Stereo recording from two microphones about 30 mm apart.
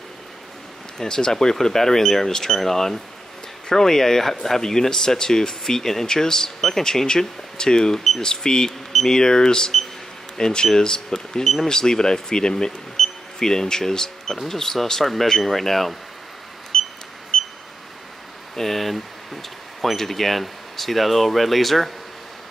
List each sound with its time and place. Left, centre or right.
0.9 s speech: left
17.3 s a sound: centre
18.6 s speech: centre